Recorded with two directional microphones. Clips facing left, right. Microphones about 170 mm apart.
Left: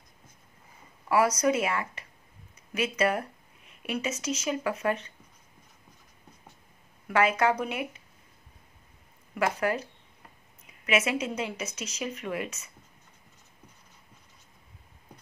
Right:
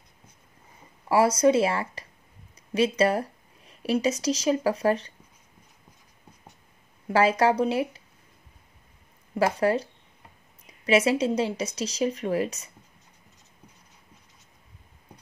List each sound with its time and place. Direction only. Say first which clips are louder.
1.0 s speech: right 4 dB; 30° right (ahead or behind)
7.1 s speech: right 3 dB; 30° right (ahead or behind)
9.3 s speech: right 5 dB; 30° right (ahead or behind)